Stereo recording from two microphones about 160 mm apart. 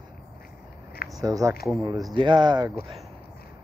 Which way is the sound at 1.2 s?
20° right (ahead or behind).